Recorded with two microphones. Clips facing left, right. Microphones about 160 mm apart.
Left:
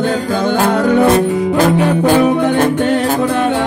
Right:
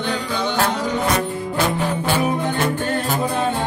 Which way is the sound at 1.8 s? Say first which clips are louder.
Left 9 dB; 75° left (ahead or behind).